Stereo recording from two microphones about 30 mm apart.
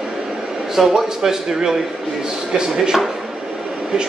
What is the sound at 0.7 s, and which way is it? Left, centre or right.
Speech, centre.